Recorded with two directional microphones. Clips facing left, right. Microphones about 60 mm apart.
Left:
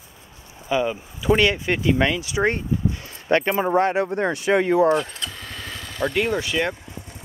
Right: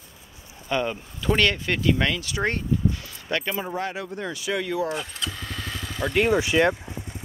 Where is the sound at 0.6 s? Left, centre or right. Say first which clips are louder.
Left 3 dB; centre.